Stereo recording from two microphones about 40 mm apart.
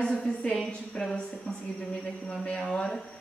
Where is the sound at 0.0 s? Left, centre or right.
Left.